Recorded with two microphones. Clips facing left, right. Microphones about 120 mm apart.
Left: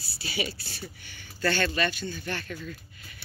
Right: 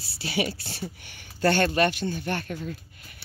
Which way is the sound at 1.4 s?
55° right (ahead or behind).